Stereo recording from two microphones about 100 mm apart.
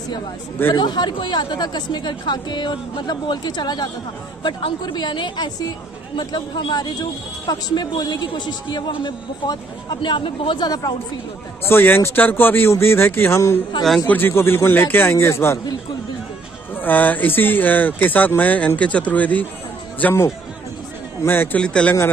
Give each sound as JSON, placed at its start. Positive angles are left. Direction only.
{"t": 0.7, "sound": "speech", "side_deg": 45}
{"t": 4.4, "sound": "speech", "side_deg": 55}
{"t": 10.7, "sound": "speech", "side_deg": 40}
{"t": 11.6, "sound": "speech", "side_deg": 20}
{"t": 16.7, "sound": "speech", "side_deg": 20}
{"t": 21.5, "sound": "speech", "side_deg": 10}